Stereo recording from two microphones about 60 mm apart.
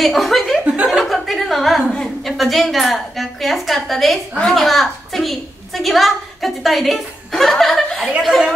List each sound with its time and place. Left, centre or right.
0.0 s speech: centre
0.8 s chuckle: centre
2.2 s a woman's voice: centre